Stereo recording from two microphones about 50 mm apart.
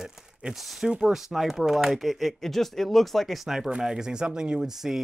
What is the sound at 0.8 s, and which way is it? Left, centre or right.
Speech, centre.